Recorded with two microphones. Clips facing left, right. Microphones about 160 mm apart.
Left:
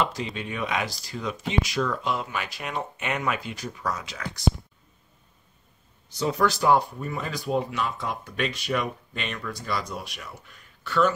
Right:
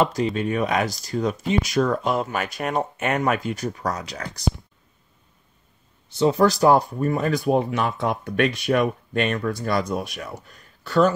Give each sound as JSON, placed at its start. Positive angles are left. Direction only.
{"t": 0.0, "sound": "speech", "side_deg": -45}
{"t": 6.0, "sound": "speech", "side_deg": -30}
{"t": 10.4, "sound": "speech", "side_deg": -40}